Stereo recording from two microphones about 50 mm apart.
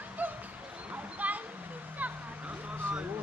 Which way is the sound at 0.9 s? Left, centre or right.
Right.